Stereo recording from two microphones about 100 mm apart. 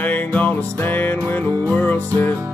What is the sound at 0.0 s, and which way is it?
Music, 15° left (ahead or behind).